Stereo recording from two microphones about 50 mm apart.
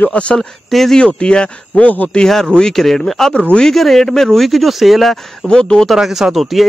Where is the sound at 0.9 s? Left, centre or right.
Centre.